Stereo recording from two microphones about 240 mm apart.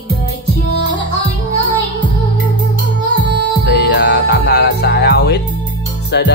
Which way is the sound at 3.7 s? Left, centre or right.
Left.